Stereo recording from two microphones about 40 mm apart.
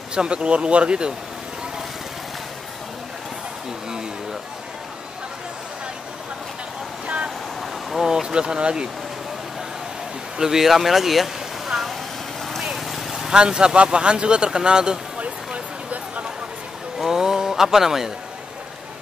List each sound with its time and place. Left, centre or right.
0.1 s speech: right
8.0 s speech: centre
10.3 s speech: centre
12.6 s vehicle: centre
13.3 s a sound: right
17.0 s a sound: centre